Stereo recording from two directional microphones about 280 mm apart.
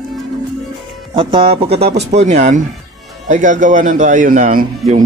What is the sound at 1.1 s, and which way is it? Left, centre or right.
Speech, centre.